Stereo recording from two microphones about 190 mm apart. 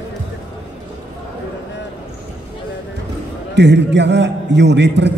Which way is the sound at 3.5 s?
65° right (ahead or behind).